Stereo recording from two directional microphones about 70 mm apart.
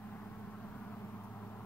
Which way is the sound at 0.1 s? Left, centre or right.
Centre.